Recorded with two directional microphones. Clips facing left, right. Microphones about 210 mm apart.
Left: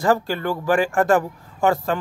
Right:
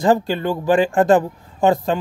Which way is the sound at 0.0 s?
20° right (ahead or behind).